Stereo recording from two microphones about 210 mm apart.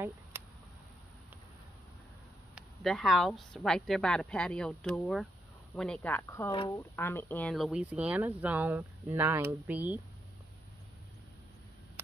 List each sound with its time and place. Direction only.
2.5 s a woman's voice: centre (ahead or behind)
6.5 s speech: 25° left (ahead or behind)
6.8 s speech: 10° left (ahead or behind); by 10.0 s 5° right (ahead or behind)